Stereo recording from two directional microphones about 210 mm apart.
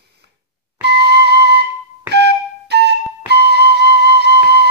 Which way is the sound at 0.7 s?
50° right (ahead or behind).